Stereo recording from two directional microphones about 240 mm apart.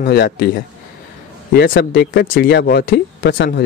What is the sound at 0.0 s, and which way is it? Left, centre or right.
Speech, left.